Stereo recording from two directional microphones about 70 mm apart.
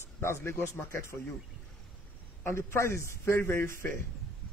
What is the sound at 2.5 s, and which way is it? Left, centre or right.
Speech, left.